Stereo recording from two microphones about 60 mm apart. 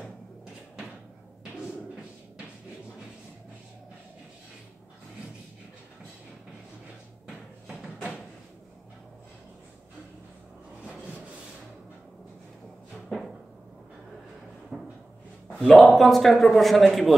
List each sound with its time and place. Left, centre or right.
10.8 s rub: centre
12.9 s a sound: centre
14.7 s cupboard open or close: centre
15.6 s a man's voice: centre